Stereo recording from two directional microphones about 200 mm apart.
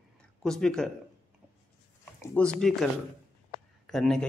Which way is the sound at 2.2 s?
5° left (ahead or behind).